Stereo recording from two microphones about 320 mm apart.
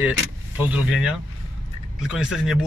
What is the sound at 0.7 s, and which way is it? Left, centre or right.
Speech, centre.